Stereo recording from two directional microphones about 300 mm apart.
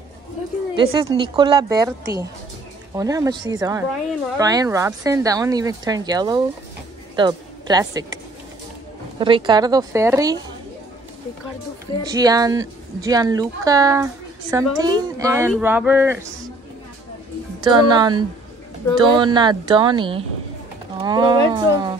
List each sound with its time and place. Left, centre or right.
0.7 s a woman's voice: centre
9.2 s speech: centre
12.1 s speech: centre
17.6 s speech: centre